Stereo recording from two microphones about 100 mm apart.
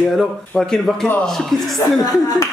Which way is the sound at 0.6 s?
5° left (ahead or behind).